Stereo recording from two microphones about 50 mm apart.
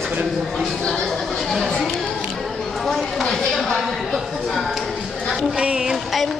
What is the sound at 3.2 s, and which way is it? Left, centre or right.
Speech, centre.